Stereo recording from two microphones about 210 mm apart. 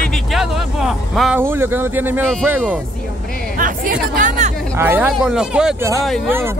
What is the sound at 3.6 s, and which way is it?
Chatter, 40° right (ahead or behind).